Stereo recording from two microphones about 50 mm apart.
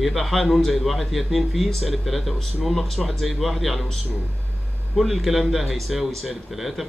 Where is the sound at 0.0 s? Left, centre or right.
Centre.